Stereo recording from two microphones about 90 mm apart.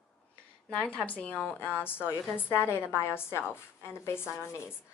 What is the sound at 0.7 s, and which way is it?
A woman's voice, 15° left (ahead or behind).